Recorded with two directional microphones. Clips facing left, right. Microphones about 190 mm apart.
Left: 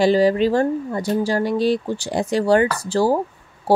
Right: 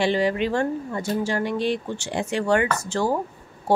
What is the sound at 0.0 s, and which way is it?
Speech, 35° left (ahead or behind).